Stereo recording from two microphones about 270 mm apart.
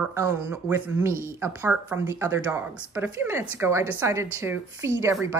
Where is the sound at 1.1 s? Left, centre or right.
Right.